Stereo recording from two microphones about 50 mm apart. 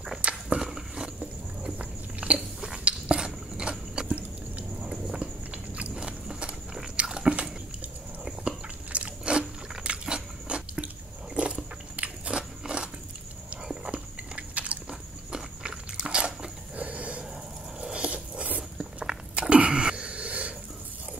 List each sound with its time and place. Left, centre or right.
0.2 s walk: right
0.7 s a sound: centre
1.8 s biting: right
4.8 s a sound: centre
5.2 s biting: right
8.9 s biting: right
13.9 s biting: right
16.7 s a sound: right
17.7 s biting: centre
19.5 s throat clearing: right